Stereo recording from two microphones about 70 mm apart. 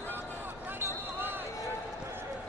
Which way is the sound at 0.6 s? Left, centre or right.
Right.